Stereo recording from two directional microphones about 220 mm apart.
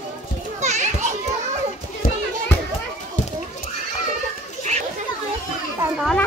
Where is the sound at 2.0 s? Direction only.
40° left (ahead or behind).